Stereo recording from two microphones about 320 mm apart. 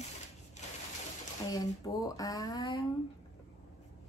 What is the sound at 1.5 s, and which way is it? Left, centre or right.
Speech, centre.